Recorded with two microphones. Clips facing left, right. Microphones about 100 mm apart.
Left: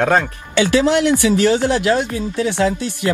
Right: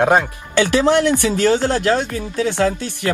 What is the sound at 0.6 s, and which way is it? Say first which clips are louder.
Speech: even; 50° right (ahead or behind).